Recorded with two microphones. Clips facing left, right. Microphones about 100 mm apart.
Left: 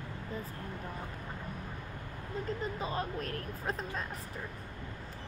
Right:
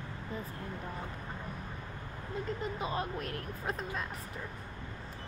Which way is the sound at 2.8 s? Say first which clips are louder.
Even; 35° left (ahead or behind).